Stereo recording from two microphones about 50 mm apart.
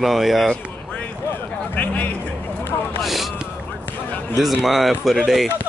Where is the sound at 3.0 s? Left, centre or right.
Centre.